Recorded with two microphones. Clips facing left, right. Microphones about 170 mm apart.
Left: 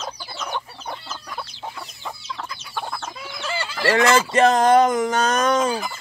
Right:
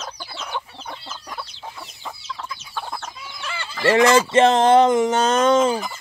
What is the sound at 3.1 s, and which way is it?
Chicken, 65° left (ahead or behind).